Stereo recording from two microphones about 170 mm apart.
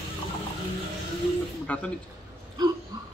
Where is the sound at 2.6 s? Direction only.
25° right (ahead or behind).